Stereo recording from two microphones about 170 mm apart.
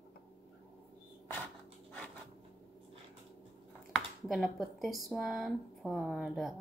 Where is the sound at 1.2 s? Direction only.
15° left (ahead or behind).